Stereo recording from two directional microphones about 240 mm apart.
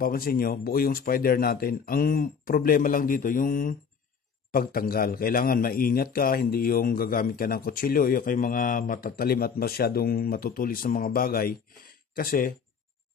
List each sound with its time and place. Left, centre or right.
0.0 s a man's voice: left